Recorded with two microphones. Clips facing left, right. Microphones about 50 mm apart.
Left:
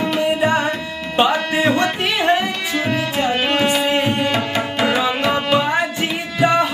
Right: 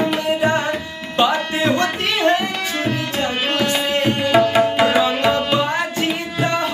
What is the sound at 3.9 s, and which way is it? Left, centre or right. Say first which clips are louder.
Tabla: left 1 dB; centre.